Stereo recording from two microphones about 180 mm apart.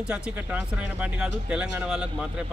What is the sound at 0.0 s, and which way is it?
Speech, 5° right (ahead or behind).